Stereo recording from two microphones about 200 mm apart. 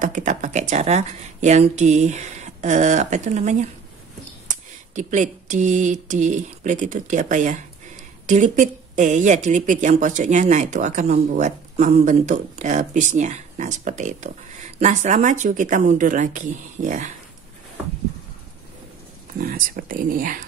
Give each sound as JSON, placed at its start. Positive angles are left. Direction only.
{"t": 0.0, "sound": "speech", "side_deg": -40}
{"t": 19.4, "sound": "speech", "side_deg": -45}